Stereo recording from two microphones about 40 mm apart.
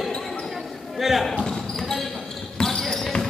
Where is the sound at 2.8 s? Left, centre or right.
Centre.